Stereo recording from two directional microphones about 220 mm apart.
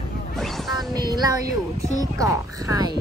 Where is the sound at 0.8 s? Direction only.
20° right (ahead or behind).